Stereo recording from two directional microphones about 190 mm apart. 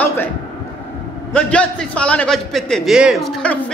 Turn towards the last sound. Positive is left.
turn(degrees=-5)  # may be behind; listen again after turning